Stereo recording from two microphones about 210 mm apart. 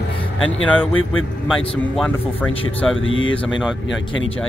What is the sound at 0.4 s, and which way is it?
Speech, 70° left (ahead or behind).